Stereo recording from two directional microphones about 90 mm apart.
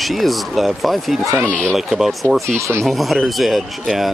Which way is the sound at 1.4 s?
15° left (ahead or behind).